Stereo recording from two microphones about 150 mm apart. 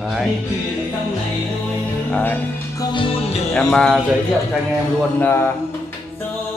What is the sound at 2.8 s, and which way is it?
Music, 35° left (ahead or behind).